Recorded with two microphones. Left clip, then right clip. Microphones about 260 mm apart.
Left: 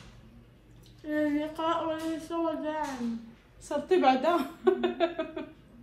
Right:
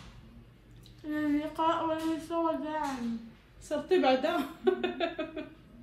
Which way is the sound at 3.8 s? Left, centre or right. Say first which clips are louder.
Left 3 dB; centre.